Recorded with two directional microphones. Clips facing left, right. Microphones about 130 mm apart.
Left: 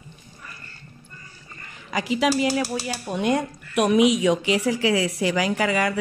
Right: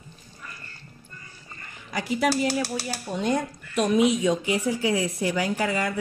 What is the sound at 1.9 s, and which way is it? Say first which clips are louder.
Speech: left 2 dB; 90° left.